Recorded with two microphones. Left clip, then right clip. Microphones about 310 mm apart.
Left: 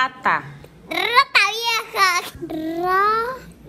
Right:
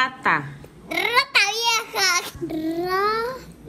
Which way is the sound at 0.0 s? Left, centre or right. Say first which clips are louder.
Left 1 dB; centre.